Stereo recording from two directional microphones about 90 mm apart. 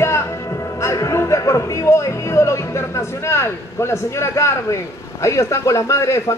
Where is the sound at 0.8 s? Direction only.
35° left (ahead or behind).